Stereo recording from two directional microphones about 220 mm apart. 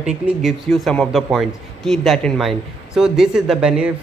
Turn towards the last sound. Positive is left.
turn(degrees=-5)  # may be behind; listen again after turning